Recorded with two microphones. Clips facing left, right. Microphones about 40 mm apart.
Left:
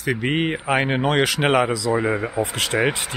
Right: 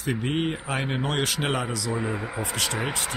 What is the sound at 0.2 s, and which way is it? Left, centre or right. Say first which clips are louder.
Speech: left 5 dB; left.